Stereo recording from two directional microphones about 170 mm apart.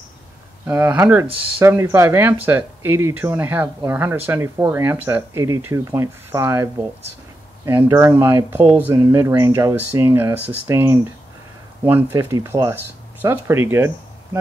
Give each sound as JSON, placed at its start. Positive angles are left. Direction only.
{"t": 0.7, "sound": "speech", "side_deg": -10}